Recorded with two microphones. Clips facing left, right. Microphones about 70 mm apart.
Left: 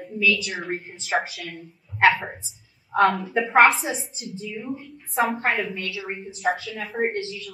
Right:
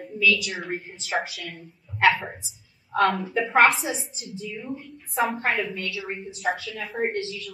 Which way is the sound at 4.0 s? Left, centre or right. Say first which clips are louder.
Left 1 dB; centre.